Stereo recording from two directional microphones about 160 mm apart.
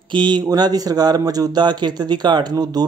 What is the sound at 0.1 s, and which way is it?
Speech, 30° right (ahead or behind).